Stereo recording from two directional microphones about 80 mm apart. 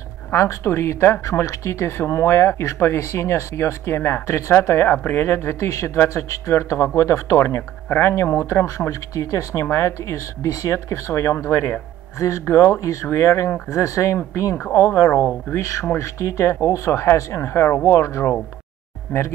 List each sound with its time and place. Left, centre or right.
0.3 s speech: left
15.6 s speech: left